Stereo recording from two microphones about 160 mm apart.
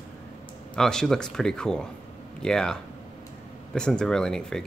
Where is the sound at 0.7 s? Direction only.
5° left (ahead or behind).